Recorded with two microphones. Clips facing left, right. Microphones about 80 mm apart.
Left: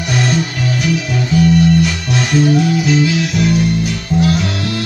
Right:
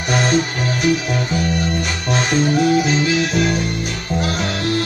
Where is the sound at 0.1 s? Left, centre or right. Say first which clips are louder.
Even; right.